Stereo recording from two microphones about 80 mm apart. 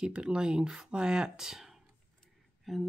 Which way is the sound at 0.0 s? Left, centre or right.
Centre.